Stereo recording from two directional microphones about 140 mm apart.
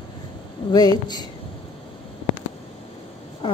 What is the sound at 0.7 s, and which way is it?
Speech, 30° left (ahead or behind).